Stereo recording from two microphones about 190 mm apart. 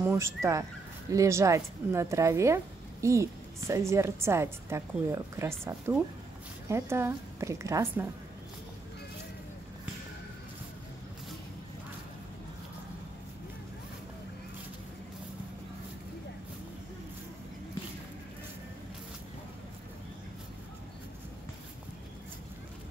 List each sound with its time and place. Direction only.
0.0 s speech: 15° right (ahead or behind)